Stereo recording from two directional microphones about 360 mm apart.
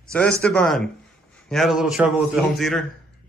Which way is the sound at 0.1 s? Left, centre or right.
Centre.